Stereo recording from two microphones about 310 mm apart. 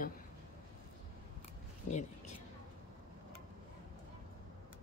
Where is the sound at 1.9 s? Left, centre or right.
Left.